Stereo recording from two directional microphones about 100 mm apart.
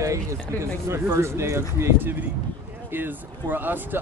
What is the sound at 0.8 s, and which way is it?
Speech, 30° right (ahead or behind).